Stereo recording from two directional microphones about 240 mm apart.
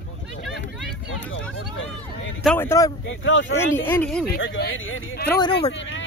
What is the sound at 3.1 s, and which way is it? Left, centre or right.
Speech, left.